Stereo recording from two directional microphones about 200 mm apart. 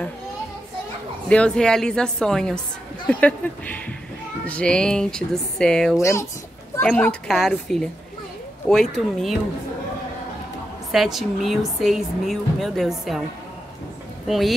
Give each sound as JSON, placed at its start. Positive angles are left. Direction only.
{"t": 1.3, "sound": "speech", "side_deg": 5}
{"t": 5.9, "sound": "speech", "side_deg": 15}
{"t": 10.9, "sound": "speech", "side_deg": 0}
{"t": 14.2, "sound": "speech", "side_deg": 0}